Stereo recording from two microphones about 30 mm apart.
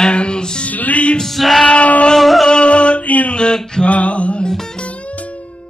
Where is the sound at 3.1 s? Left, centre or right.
Left.